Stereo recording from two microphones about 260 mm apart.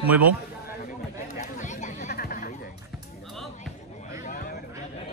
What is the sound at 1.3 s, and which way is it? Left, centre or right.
Chatter, left.